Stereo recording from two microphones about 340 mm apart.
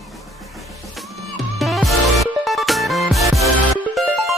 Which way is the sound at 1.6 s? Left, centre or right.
Centre.